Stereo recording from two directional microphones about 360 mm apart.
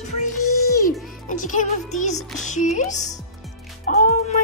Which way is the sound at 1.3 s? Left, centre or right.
Left.